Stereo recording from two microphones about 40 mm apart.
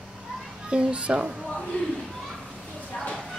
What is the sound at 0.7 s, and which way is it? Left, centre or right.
Speech, right.